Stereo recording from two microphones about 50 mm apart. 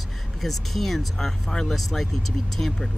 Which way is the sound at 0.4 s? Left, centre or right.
Centre.